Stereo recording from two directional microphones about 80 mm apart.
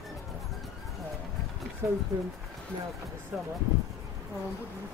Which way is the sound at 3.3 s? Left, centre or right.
Right.